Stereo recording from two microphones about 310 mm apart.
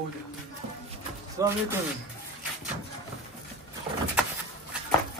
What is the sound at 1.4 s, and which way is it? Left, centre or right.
Speech, centre.